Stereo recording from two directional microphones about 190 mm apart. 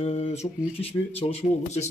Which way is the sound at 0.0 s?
35° left (ahead or behind).